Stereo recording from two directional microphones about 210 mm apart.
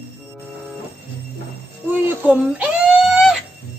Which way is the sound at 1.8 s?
5° right (ahead or behind).